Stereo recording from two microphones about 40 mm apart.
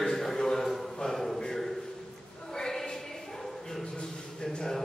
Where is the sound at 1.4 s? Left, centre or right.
Centre.